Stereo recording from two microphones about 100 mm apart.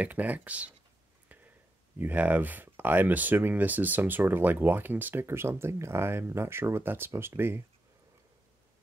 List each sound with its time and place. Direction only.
0.0 s speech: 15° right (ahead or behind)
1.3 s a sound: 15° right (ahead or behind)
2.0 s speech: 15° right (ahead or behind)